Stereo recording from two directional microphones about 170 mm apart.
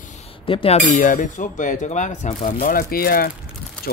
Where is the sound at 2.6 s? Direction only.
60° left (ahead or behind).